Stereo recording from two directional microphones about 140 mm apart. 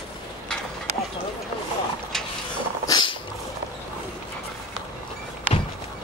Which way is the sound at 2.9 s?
35° left (ahead or behind).